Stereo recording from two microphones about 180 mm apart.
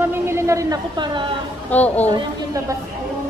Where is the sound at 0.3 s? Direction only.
15° right (ahead or behind).